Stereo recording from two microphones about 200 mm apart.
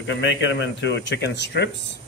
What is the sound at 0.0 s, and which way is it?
Speech, 65° left (ahead or behind).